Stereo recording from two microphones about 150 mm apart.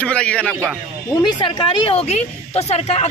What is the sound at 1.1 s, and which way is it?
Speech, 30° left (ahead or behind).